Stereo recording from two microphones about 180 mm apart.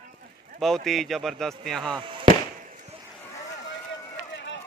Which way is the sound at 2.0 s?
25° right (ahead or behind).